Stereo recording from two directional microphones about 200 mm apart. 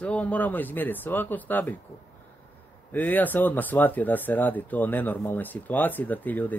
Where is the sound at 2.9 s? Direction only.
10° left (ahead or behind).